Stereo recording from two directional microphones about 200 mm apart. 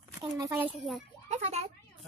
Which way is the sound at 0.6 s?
5° right (ahead or behind).